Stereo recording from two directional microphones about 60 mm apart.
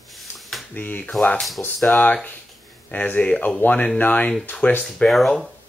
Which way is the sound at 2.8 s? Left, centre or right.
Left.